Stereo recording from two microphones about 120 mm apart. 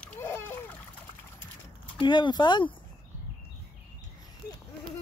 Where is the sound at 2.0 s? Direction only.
40° left (ahead or behind).